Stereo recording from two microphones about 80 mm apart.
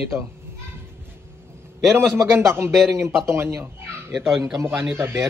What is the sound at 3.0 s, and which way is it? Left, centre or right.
Speech, right.